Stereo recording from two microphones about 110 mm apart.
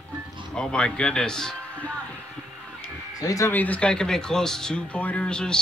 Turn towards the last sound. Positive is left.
turn(degrees=5)  # may be behind; listen again after turning